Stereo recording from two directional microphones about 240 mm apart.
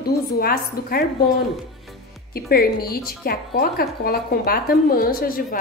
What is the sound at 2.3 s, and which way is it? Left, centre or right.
Speech, left.